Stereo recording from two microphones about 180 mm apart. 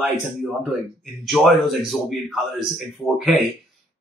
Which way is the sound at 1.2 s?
Centre (ahead or behind).